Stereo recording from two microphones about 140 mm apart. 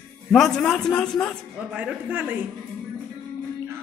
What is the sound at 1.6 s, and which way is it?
Speech, 5° right (ahead or behind).